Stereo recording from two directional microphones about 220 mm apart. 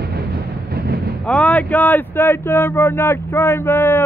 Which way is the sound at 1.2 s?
5° left (ahead or behind).